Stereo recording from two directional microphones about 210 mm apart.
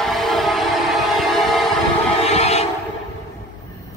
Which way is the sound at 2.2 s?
30° left (ahead or behind).